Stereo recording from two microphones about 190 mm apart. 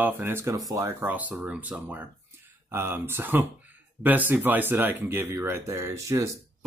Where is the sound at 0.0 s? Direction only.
15° right (ahead or behind).